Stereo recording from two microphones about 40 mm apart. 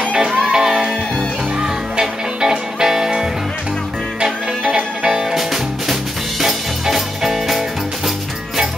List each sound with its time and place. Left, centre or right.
0.5 s music: centre
6.4 s music: centre